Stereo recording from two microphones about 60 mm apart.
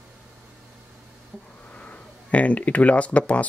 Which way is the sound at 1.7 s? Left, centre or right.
Left.